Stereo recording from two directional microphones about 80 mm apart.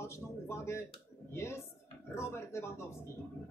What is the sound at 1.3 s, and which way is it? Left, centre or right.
Speech, left.